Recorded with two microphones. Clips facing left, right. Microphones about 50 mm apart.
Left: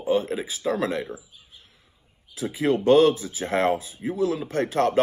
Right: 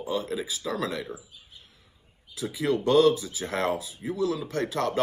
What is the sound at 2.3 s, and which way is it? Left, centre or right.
Speech, left.